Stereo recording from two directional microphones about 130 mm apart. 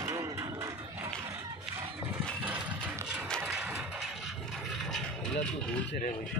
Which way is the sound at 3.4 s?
10° right (ahead or behind).